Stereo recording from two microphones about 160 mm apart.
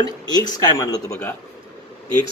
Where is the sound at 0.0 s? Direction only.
25° left (ahead or behind).